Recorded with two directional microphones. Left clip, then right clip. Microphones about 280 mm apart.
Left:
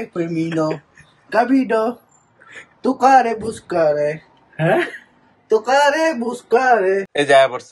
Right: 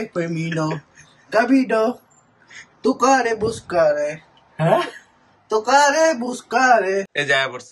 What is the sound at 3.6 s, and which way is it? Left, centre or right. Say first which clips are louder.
Speech: left 1 dB; right.